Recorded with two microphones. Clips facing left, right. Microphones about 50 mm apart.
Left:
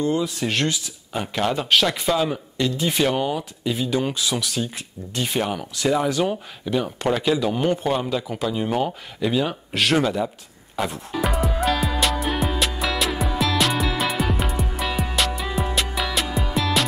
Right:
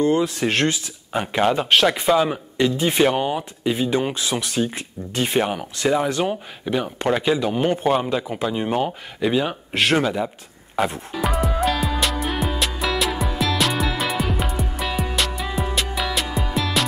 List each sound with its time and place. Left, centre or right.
0.0 s speech: right
1.1 s speech: right
5.5 s speech: centre
11.1 s music: centre